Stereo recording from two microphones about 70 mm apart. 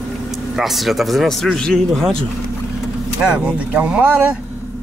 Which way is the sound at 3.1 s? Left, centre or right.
Centre.